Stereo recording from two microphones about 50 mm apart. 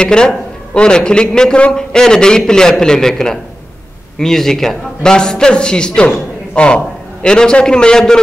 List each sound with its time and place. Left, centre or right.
0.0 s a man's voice: centre